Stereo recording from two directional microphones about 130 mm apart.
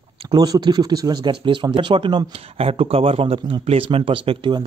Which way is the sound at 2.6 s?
50° right (ahead or behind).